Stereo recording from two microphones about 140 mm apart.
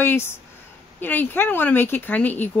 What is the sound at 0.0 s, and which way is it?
Speech, 15° left (ahead or behind).